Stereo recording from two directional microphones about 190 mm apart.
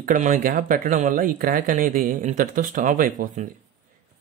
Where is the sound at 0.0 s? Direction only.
40° right (ahead or behind).